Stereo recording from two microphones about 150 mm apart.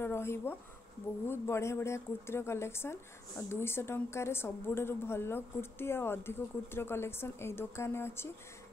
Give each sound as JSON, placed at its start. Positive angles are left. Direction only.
{"t": 0.0, "sound": "speech", "side_deg": 15}